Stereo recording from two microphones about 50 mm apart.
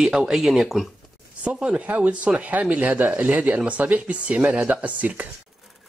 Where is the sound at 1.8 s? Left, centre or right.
Right.